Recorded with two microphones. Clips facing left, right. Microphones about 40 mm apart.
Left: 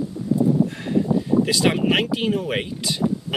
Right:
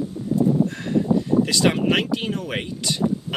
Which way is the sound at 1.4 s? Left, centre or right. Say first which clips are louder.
Even; centre.